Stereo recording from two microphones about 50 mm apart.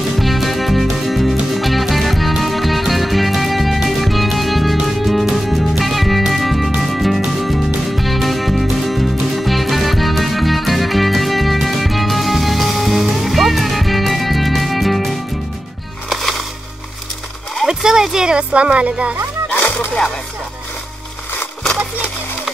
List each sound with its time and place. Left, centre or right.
0.2 s music: centre
17.6 s speech: centre